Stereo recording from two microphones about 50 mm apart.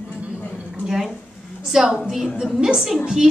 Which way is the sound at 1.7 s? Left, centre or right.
Centre.